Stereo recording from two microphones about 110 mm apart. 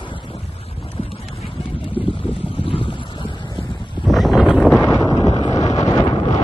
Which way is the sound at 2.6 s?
55° left (ahead or behind).